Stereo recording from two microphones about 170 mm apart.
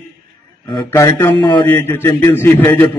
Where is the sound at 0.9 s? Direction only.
15° left (ahead or behind).